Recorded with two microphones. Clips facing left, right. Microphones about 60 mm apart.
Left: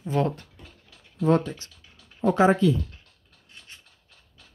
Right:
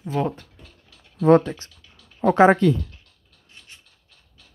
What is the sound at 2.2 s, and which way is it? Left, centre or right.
Speech, right.